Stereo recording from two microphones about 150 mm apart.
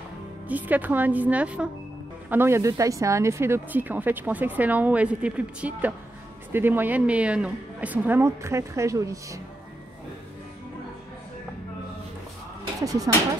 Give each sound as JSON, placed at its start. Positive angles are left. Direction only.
{"t": 0.5, "sound": "speech", "side_deg": -10}
{"t": 12.8, "sound": "speech", "side_deg": -25}